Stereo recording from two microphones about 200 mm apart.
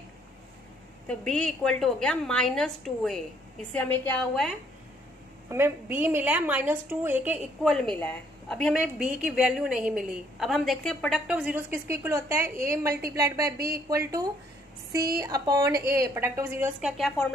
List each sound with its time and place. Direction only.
1.0 s a woman's voice: 5° left (ahead or behind)
5.5 s a woman's voice: 10° right (ahead or behind)
7.7 s a woman's voice: centre (ahead or behind)
16.9 s a woman's voice: centre (ahead or behind)